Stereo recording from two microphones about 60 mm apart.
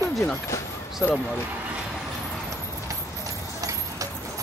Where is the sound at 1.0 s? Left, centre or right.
Left.